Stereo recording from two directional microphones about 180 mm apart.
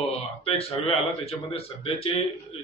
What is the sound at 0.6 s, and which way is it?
Speech, 30° left (ahead or behind).